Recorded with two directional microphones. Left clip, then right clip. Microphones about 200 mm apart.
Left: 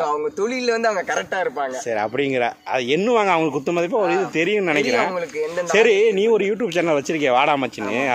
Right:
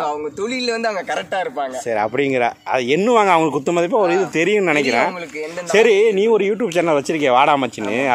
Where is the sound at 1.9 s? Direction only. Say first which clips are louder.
Right 4 dB; 35° right (ahead or behind).